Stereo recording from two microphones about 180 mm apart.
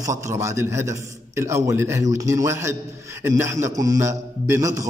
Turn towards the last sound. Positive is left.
turn(degrees=-15)  # may be behind; listen again after turning